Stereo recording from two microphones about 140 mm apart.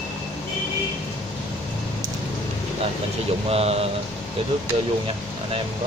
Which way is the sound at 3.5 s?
45° right (ahead or behind).